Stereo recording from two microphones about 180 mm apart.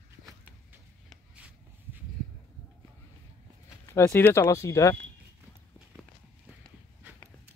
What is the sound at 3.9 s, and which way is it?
Speech, 15° left (ahead or behind).